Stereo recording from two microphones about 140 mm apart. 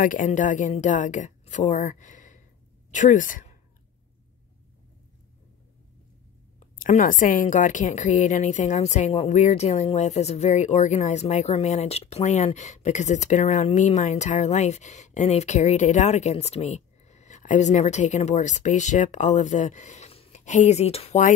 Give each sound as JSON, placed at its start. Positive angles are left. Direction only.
{"t": 0.0, "sound": "a woman's voice", "side_deg": 70}
{"t": 6.8, "sound": "a woman's voice", "side_deg": 70}